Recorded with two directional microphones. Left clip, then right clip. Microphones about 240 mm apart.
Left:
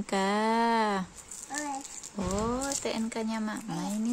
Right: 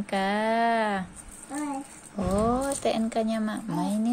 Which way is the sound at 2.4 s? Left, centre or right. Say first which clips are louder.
Right 6 dB; centre.